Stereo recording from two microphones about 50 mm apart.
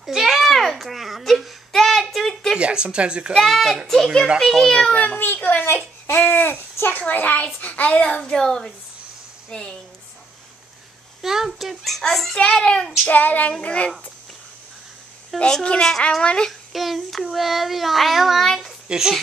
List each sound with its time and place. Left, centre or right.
0.0 s babbling: centre
1.7 s a sound: centre
2.6 s speech: centre
3.3 s a child's voice: centre
4.8 s a child's voice: centre
5.2 s a child's voice: left
8.0 s a woman's voice: centre
11.2 s a child's voice: centre
12.4 s a child's voice: centre
13.0 s a child's voice: left
15.3 s a child's voice: centre
16.2 s a woman's voice: centre
16.7 s a child's voice: centre